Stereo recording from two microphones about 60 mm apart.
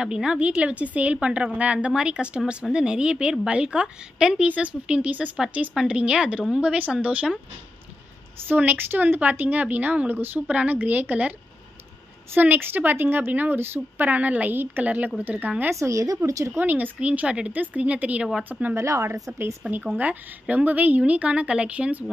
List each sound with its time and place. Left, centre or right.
0.0 s a woman's voice: centre
4.5 s a woman's voice: right
8.5 s a woman's voice: right
12.4 s speech: right
15.8 s speech: right
16.5 s a woman's voice: right
18.8 s speech: right
19.6 s a woman's voice: centre
20.0 s a woman's voice: right